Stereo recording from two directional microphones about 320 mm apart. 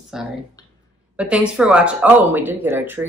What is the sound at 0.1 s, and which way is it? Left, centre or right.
Speech, centre.